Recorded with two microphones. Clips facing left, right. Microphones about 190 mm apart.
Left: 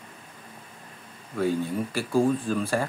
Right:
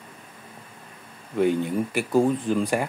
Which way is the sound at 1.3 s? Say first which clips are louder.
Right 4 dB; 20° right (ahead or behind).